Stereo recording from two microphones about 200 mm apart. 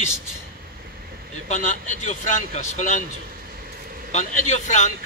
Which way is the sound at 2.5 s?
35° left (ahead or behind).